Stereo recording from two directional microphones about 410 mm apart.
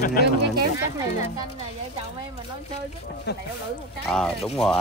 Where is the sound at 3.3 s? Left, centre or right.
Left.